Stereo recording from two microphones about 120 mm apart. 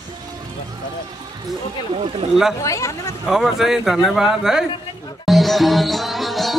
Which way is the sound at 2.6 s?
25° left (ahead or behind).